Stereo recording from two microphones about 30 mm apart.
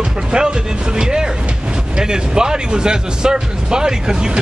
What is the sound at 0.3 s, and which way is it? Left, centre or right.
Speech, right.